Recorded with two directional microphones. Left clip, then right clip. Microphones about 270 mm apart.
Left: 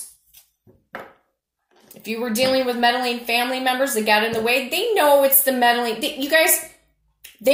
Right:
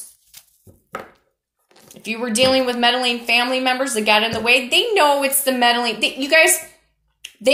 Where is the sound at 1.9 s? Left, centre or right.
Right.